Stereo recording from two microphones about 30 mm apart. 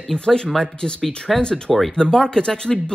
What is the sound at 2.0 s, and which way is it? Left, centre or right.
Speech, left.